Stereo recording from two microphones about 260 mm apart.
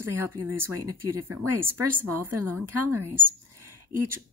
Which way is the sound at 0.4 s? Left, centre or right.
Centre.